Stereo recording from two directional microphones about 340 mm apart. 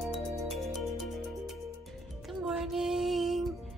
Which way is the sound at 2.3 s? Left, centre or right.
Centre.